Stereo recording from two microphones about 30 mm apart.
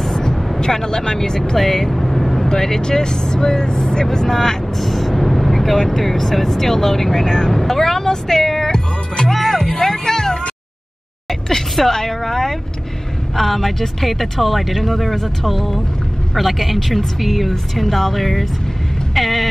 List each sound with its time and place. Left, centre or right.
0.1 s vehicle: left
0.6 s speech: centre
1.6 s vehicle: centre
2.4 s speech: centre
9.4 s music: centre
11.2 s a sound: centre
11.9 s speech: centre
19.1 s music: centre